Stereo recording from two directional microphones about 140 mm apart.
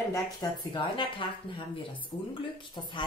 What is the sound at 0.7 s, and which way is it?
Speech, 35° left (ahead or behind).